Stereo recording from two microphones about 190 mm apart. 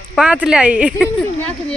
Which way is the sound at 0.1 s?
5° right (ahead or behind).